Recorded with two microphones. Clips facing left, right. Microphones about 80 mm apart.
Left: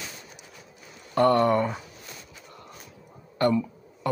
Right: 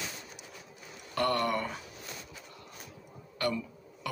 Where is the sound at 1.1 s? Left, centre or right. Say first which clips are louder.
Left 9 dB; left.